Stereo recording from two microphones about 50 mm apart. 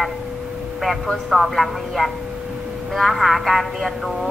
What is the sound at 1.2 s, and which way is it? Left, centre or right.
Speech, centre.